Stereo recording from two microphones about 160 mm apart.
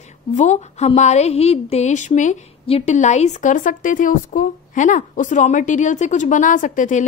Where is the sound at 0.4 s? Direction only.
45° left (ahead or behind).